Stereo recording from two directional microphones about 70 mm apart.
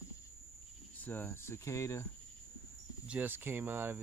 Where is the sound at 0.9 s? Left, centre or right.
Left.